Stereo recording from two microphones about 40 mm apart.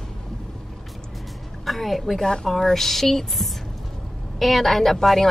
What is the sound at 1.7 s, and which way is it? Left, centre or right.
A woman's voice, centre.